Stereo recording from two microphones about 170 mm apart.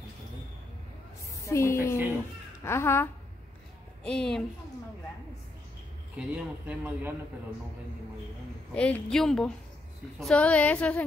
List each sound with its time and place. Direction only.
1.5 s a woman's voice: 15° left (ahead or behind)
6.1 s a man's voice: 10° right (ahead or behind)
8.7 s a woman's voice: 5° left (ahead or behind)